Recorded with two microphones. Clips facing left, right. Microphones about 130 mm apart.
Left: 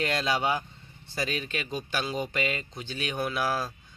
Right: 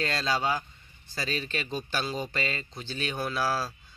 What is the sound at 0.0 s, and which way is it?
Speech, 20° left (ahead or behind).